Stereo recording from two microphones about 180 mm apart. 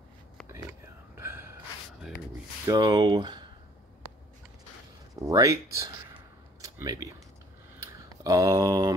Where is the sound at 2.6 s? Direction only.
20° right (ahead or behind).